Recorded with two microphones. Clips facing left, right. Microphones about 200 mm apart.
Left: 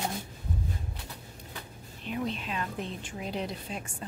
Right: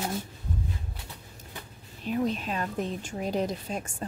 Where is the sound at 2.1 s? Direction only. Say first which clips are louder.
Right 5 dB; 40° right (ahead or behind).